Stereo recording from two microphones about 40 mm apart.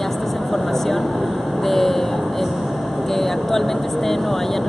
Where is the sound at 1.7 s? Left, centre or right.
Centre.